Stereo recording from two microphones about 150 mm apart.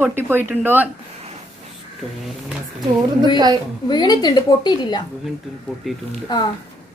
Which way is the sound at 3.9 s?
30° left (ahead or behind).